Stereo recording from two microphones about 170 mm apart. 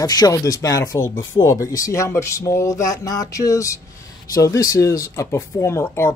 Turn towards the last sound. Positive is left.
turn(degrees=15)  # may be behind; listen again after turning